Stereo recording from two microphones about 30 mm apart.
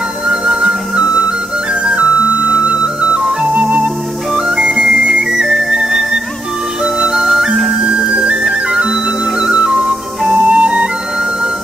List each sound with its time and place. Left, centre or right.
0.3 s music: right
2.6 s music: right
3.4 s music: right
4.5 s flute: right
5.9 s music: centre
7.8 s music: right